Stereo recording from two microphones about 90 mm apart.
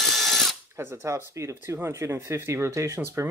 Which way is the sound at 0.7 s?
30° right (ahead or behind).